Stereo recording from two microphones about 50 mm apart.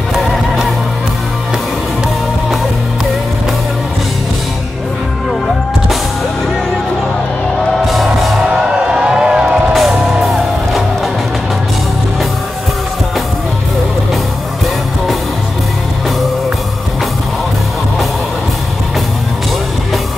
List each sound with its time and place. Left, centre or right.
0.1 s music: centre
7.8 s music: centre
8.5 s music: centre
9.8 s music: centre